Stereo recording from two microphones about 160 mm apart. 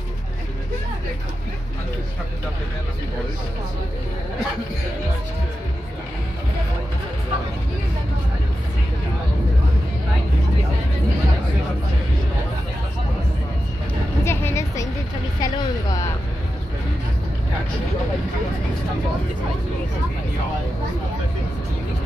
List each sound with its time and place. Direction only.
14.2 s music: 15° left (ahead or behind)
15.4 s speech: 25° left (ahead or behind)